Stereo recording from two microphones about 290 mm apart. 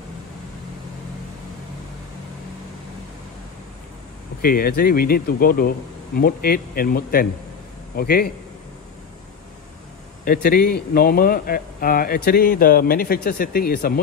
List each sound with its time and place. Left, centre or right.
4.4 s speech: left
10.2 s speech: left